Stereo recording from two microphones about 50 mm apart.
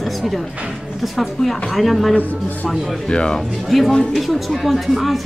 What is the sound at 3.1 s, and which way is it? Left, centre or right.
Speech, centre.